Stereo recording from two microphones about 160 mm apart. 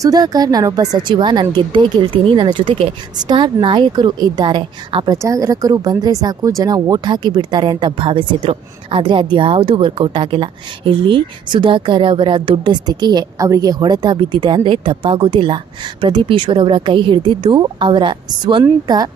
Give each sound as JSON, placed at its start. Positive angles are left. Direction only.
{"t": 0.0, "sound": "speech", "side_deg": -25}